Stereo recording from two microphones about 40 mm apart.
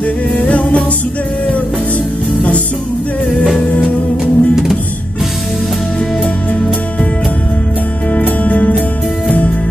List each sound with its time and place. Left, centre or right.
0.0 s music: left
4.2 s music: centre
8.1 s music: left